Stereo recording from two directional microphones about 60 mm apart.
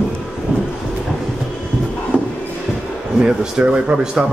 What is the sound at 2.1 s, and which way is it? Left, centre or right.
Music, right.